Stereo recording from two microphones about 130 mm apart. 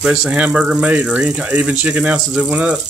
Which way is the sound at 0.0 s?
5° right (ahead or behind).